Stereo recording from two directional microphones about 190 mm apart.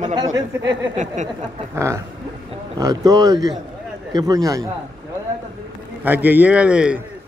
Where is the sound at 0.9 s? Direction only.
40° right (ahead or behind).